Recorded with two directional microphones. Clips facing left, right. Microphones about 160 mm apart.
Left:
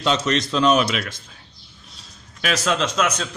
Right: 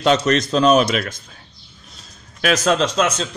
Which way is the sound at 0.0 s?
50° right (ahead or behind).